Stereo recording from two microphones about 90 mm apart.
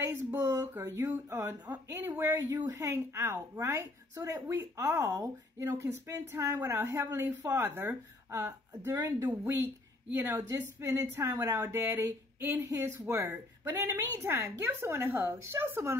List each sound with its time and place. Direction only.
0.0 s a woman's voice: 25° right (ahead or behind)
9.2 s a woman's voice: 15° right (ahead or behind)